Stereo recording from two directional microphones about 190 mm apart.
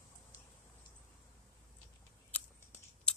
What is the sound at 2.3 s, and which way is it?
Scissors, 10° left (ahead or behind).